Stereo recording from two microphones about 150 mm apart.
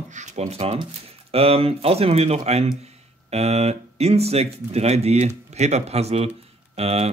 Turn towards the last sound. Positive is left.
turn(degrees=-45)  # may be behind; listen again after turning